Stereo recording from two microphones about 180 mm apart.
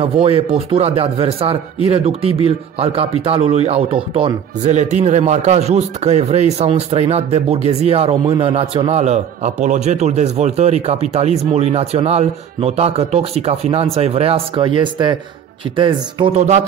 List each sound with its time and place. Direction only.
0.0 s speech: 30° right (ahead or behind)
16.3 s speech: 40° right (ahead or behind)